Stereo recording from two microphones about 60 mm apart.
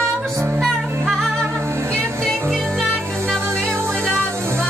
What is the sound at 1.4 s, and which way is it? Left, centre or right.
Music, right.